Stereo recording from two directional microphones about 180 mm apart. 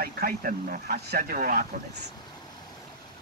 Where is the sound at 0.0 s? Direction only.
55° right (ahead or behind).